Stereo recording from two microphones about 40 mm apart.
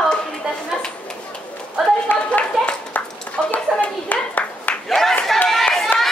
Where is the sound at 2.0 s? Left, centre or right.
Left.